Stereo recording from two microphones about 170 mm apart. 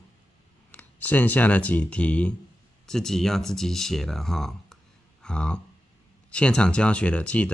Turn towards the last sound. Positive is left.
turn(degrees=10)  # may be behind; listen again after turning